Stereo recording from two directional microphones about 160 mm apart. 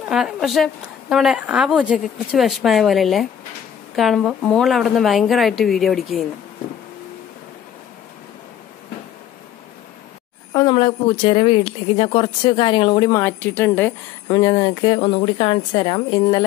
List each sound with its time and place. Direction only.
0.1 s a woman's voice: centre (ahead or behind)
10.5 s a sound: 25° left (ahead or behind)
10.8 s speech: 35° left (ahead or behind); by 13.9 s 10° left (ahead or behind)
14.2 s speech: 25° left (ahead or behind)